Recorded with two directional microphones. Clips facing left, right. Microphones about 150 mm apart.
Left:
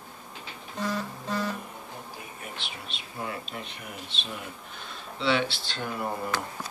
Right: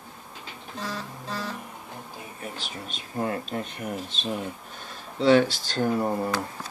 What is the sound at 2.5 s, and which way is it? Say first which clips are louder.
Speech: right 3 dB; 40° right (ahead or behind).